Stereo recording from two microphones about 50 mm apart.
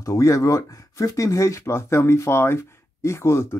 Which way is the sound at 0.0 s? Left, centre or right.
Left.